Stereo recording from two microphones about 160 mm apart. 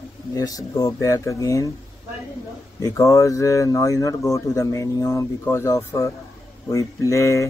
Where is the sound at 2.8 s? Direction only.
20° left (ahead or behind).